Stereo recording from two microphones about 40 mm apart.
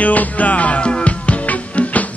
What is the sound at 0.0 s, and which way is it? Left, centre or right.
Music, left.